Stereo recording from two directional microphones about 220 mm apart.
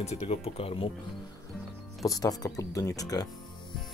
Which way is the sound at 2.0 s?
15° left (ahead or behind).